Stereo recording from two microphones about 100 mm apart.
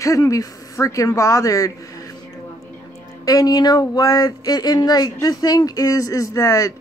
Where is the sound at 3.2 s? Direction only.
40° left (ahead or behind).